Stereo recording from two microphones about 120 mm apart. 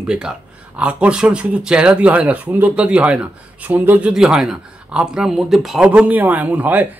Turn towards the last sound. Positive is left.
turn(degrees=-15)  # may be behind; listen again after turning